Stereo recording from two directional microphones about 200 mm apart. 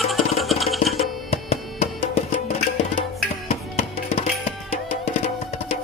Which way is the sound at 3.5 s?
30° left (ahead or behind).